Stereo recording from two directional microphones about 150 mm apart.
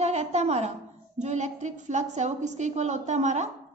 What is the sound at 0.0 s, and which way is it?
A woman's voice, 45° right (ahead or behind).